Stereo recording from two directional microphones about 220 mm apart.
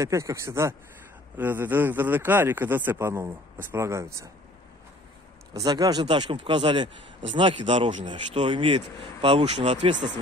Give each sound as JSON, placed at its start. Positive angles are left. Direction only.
{"t": 0.0, "sound": "speech", "side_deg": -15}
{"t": 5.5, "sound": "speech", "side_deg": -15}